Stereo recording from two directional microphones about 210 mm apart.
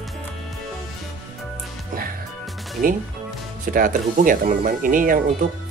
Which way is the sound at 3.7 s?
40° right (ahead or behind).